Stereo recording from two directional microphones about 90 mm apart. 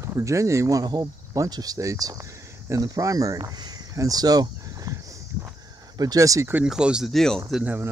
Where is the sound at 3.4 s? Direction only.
40° right (ahead or behind).